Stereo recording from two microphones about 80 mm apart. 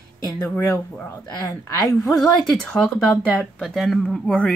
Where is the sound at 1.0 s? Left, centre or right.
Left.